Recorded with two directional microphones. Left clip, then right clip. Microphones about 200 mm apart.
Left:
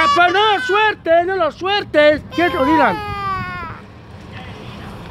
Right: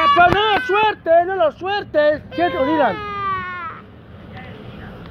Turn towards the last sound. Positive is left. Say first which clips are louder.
# even
turn(degrees=15)  # may be behind; listen again after turning